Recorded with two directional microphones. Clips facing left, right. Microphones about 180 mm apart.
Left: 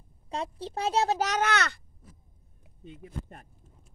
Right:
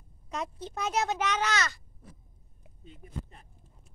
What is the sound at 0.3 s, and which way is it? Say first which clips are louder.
A child's voice: left 2 dB; 30° left (ahead or behind).